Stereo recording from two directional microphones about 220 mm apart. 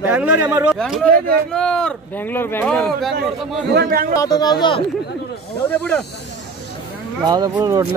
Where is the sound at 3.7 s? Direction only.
45° right (ahead or behind).